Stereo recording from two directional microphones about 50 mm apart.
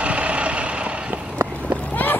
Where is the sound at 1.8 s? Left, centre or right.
Left.